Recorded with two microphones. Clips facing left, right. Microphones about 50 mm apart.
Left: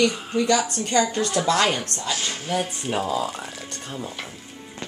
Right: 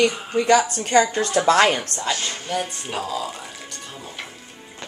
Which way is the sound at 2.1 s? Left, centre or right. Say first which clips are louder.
Left 1 dB; centre.